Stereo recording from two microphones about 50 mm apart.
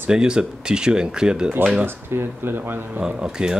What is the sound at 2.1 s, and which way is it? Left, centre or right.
Speech, right.